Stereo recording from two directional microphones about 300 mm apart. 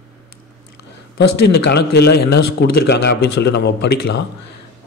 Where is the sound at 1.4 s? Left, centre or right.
Left.